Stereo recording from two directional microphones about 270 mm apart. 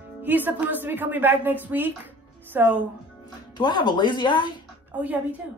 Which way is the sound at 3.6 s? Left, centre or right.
Centre.